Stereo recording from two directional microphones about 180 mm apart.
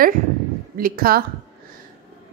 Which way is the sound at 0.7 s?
55° right (ahead or behind).